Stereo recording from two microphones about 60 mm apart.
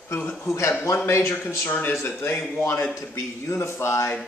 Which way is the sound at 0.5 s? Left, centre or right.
Left.